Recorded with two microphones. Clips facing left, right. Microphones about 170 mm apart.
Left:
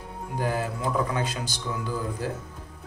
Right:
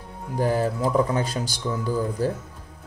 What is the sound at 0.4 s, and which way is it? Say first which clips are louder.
Speech: right 6 dB; 35° right (ahead or behind).